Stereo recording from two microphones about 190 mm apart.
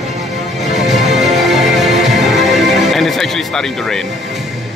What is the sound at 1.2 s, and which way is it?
Music, centre (ahead or behind).